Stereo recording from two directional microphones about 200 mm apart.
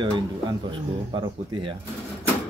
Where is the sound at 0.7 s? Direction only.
25° right (ahead or behind).